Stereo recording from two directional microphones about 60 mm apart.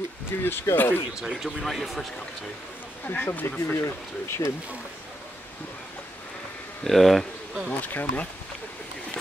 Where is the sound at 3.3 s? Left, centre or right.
Left.